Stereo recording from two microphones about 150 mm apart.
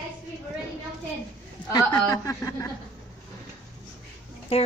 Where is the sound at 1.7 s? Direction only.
25° left (ahead or behind).